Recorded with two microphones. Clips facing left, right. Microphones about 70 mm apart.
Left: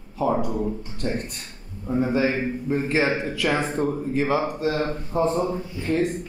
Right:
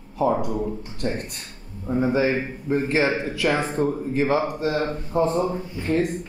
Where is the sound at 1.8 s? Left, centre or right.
Centre.